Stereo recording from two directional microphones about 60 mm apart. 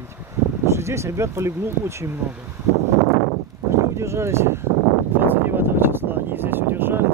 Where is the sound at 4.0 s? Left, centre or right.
Right.